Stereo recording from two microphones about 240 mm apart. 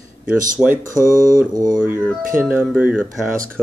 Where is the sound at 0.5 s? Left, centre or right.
Centre.